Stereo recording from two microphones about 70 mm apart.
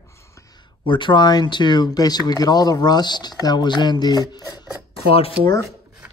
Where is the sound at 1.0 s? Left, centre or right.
Left.